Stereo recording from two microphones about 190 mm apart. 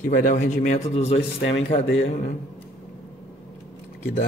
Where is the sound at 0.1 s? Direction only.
45° left (ahead or behind).